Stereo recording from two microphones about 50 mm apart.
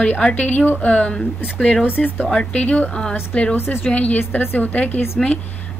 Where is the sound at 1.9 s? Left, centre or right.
Left.